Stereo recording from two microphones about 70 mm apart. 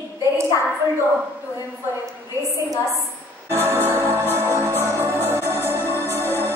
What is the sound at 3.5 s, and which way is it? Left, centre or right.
Music, right.